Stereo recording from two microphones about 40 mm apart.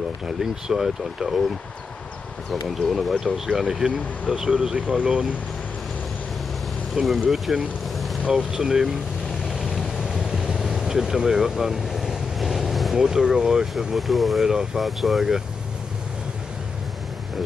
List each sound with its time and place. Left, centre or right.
0.4 s speech: centre
2.9 s speech: centre; by 5.3 s right
7.1 s speech: centre
8.2 s speech: centre
9.5 s vehicle: centre
10.6 s speech: centre
12.4 s vehicle: centre
12.9 s speech: centre
13.9 s speech: centre
14.4 s speech: centre
14.8 s speech: centre